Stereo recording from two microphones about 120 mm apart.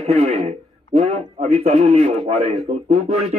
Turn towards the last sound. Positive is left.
turn(degrees=-65)  # may be behind; listen again after turning